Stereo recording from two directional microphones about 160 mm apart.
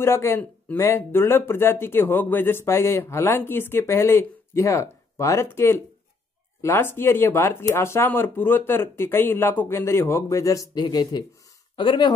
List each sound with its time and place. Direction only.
0.0 s speech: 15° left (ahead or behind)